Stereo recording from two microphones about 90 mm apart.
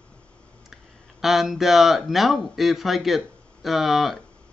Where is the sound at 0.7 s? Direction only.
5° right (ahead or behind).